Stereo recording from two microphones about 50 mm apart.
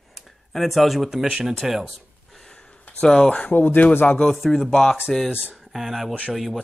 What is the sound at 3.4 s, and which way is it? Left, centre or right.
Speech, left.